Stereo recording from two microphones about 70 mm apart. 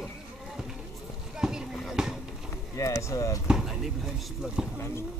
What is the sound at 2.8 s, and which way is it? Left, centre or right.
Speech, left.